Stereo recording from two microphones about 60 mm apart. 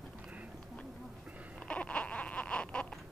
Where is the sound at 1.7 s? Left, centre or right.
Centre.